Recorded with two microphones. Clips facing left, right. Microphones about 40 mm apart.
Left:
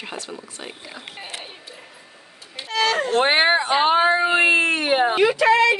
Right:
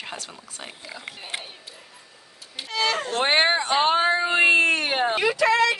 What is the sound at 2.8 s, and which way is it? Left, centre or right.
Speech, centre.